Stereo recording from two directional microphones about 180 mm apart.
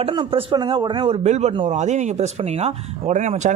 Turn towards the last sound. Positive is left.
turn(degrees=-40)  # may be behind; listen again after turning